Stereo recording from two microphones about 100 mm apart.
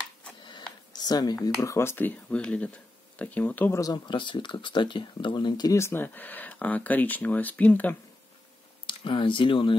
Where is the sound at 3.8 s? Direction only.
45° left (ahead or behind).